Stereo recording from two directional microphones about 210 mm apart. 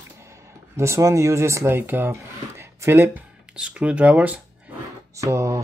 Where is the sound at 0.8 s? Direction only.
15° right (ahead or behind).